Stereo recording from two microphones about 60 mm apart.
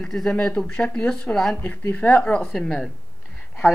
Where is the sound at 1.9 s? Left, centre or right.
Left.